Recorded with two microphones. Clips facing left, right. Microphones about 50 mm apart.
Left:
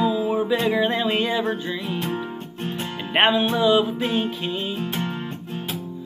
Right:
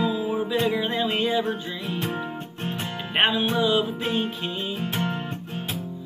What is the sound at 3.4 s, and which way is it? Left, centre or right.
Music, centre.